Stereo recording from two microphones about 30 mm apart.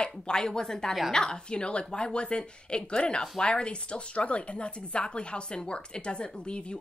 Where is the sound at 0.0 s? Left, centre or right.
Left.